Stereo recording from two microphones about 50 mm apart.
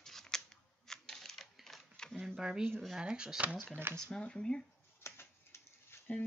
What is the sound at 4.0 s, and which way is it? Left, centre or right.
Speech, centre.